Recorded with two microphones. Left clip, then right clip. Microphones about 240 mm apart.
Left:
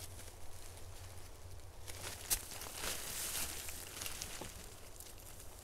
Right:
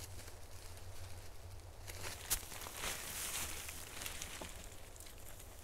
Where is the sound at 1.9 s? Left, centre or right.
Centre.